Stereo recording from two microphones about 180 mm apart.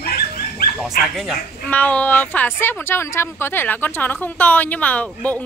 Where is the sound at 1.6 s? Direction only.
10° left (ahead or behind).